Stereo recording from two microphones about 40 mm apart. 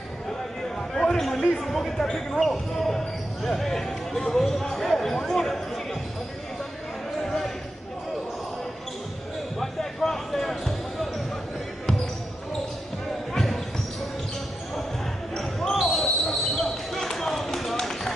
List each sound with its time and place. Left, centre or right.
0.9 s a sound: centre
1.5 s speech: centre
9.6 s basketball bounce: centre
13.3 s basketball bounce: centre
15.7 s basketball bounce: centre